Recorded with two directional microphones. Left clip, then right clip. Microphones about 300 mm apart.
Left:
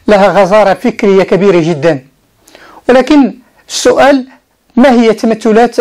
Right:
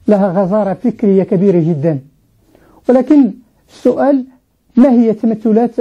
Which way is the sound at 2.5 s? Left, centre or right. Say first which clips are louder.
Left 4 dB; centre.